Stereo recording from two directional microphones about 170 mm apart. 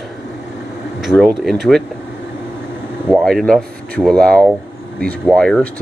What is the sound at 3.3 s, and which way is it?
Speech, centre (ahead or behind).